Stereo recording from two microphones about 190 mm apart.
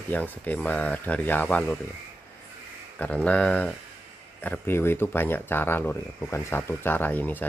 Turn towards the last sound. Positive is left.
turn(degrees=10)  # may be behind; listen again after turning